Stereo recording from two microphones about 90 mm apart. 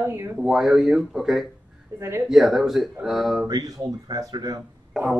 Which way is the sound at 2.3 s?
Centre (ahead or behind).